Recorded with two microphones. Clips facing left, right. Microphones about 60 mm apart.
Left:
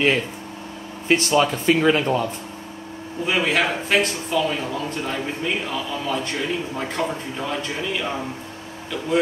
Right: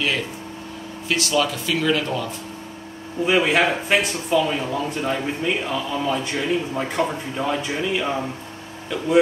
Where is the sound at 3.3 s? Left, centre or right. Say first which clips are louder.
Right 3 dB; centre.